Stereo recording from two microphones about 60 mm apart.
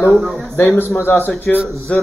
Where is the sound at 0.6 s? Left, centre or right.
Left.